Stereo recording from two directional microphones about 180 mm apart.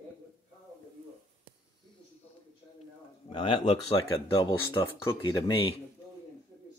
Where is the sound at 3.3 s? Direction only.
30° left (ahead or behind).